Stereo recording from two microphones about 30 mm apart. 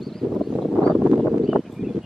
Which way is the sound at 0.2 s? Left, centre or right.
Centre.